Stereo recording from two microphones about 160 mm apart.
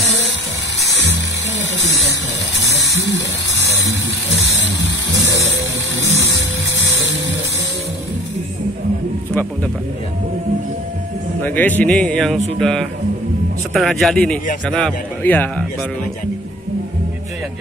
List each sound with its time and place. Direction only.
11.4 s speech: 10° left (ahead or behind)